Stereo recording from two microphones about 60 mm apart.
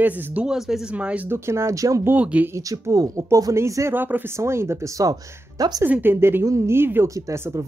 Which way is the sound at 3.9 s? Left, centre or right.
Right.